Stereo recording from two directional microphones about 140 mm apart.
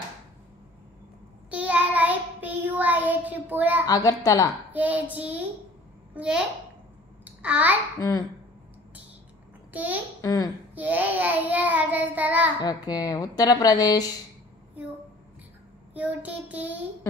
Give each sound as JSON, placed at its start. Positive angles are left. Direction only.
{"t": 1.5, "sound": "child singing", "side_deg": -10}
{"t": 3.8, "sound": "speech", "side_deg": 25}
{"t": 4.7, "sound": "child singing", "side_deg": -10}
{"t": 7.4, "sound": "child singing", "side_deg": -10}
{"t": 9.7, "sound": "a child's voice", "side_deg": -10}
{"t": 10.2, "sound": "speech", "side_deg": 25}
{"t": 10.7, "sound": "child singing", "side_deg": -10}
{"t": 12.6, "sound": "speech", "side_deg": 30}
{"t": 15.9, "sound": "child singing", "side_deg": -10}